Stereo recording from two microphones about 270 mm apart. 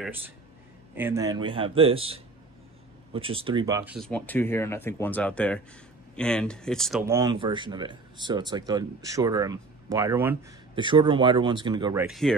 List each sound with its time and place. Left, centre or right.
0.9 s a man's voice: centre
4.0 s speech: centre